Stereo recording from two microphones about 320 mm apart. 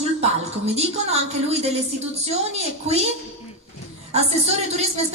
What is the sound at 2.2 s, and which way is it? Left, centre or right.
Speech, centre.